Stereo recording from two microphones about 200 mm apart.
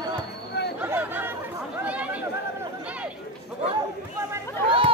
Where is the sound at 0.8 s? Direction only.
10° right (ahead or behind).